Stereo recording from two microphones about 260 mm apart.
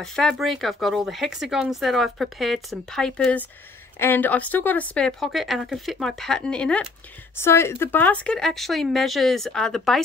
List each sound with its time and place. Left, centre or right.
0.0 s speech: centre